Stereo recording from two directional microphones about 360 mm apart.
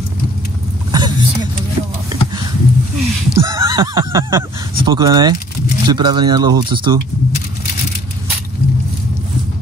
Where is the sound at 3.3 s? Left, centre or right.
Centre.